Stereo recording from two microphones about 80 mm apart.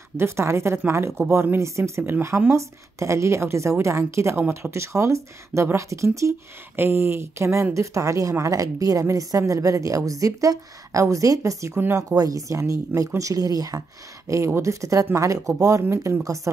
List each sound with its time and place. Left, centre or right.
0.2 s a woman's voice: right
4.4 s speech: right
4.7 s a woman's voice: right
11.7 s a woman's voice: right
12.2 s a woman's voice: right